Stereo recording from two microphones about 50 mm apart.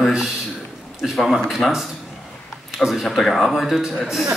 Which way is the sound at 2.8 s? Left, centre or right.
Centre.